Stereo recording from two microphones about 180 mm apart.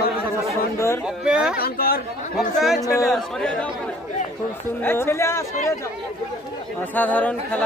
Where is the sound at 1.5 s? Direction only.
60° left (ahead or behind).